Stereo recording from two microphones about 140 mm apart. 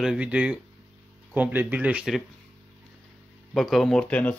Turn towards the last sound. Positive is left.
turn(degrees=10)  # may be behind; listen again after turning